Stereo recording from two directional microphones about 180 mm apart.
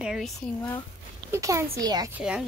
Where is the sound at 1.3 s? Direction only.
15° right (ahead or behind).